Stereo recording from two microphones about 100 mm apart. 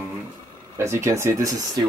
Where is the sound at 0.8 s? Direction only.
30° right (ahead or behind).